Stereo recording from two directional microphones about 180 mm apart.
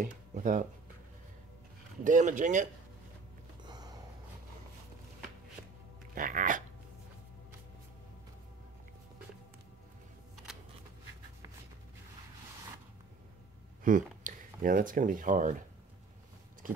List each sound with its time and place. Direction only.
0.0 s speech: 45° right (ahead or behind)
2.0 s speech: 45° right (ahead or behind)
3.6 s a sound: 20° right (ahead or behind)
6.1 s speech: 50° right (ahead or behind)
10.3 s a sound: centre (ahead or behind)
13.8 s speech: 45° right (ahead or behind)